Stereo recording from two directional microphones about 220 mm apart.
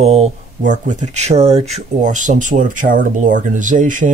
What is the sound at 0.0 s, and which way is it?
Speech, 30° right (ahead or behind).